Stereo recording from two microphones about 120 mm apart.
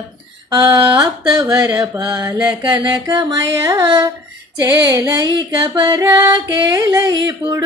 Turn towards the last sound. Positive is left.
turn(degrees=-30)  # may be behind; listen again after turning